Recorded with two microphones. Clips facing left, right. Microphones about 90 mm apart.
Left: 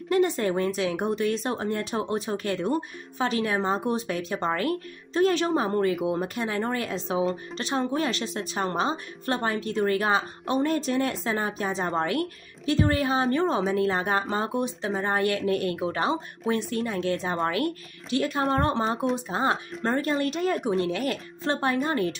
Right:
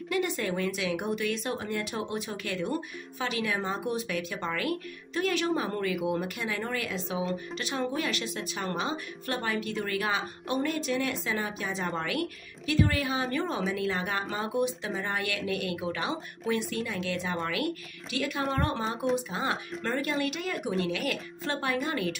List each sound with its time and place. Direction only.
0.1 s speech: 35° left (ahead or behind)